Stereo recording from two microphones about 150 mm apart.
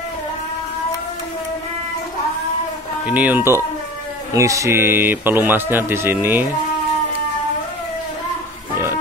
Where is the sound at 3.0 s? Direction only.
10° right (ahead or behind).